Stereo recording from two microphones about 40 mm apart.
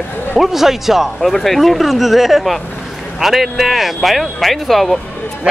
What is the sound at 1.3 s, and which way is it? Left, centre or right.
Speech, centre.